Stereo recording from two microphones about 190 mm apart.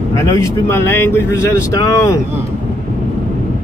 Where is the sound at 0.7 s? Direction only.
10° left (ahead or behind).